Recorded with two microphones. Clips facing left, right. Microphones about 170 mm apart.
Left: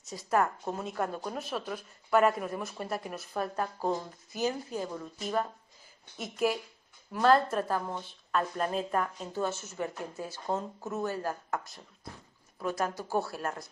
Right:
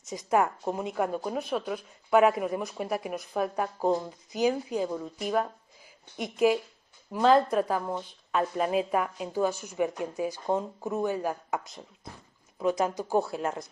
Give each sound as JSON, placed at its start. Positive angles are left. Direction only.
{"t": 0.0, "sound": "a woman's voice", "side_deg": -20}
{"t": 1.4, "sound": "a woman's voice", "side_deg": 0}
{"t": 7.1, "sound": "a woman's voice", "side_deg": -15}
{"t": 7.4, "sound": "a woman's voice", "side_deg": 0}